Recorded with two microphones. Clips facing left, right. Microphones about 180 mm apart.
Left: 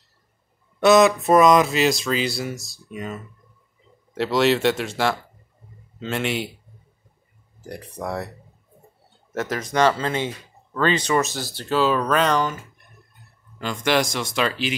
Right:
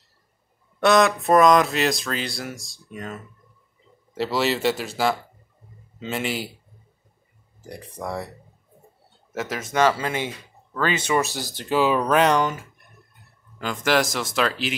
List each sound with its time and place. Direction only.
0.7 s speech: centre (ahead or behind)
7.6 s speech: 5° left (ahead or behind)
9.3 s speech: 5° right (ahead or behind)
13.6 s speech: centre (ahead or behind)